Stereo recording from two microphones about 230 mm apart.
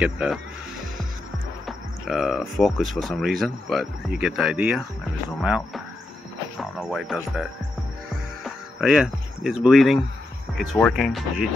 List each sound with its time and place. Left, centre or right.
0.0 s speech: centre
1.7 s speech: centre
8.5 s speech: centre